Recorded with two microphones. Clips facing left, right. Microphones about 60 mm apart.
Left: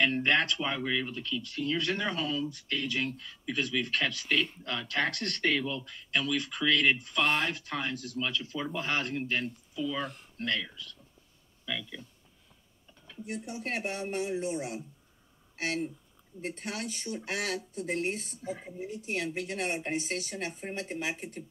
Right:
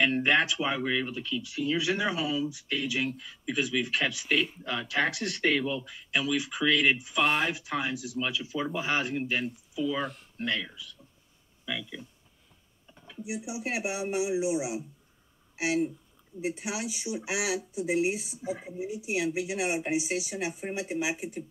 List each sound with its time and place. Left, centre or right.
0.0 s speech: centre